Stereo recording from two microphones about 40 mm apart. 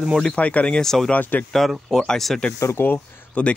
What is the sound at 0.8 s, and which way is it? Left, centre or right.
Speech, centre.